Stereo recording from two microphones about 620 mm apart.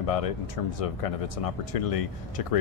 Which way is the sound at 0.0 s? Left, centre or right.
Left.